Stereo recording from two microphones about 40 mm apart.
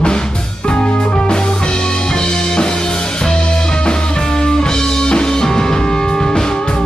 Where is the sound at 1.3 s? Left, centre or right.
Centre.